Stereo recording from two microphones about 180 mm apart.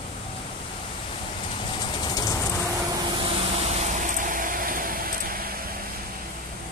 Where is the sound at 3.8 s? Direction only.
45° right (ahead or behind).